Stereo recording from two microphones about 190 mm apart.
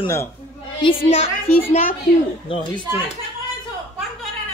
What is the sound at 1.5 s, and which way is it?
Speech, 45° left (ahead or behind).